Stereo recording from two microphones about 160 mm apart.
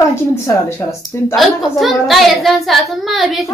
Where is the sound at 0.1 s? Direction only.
15° left (ahead or behind).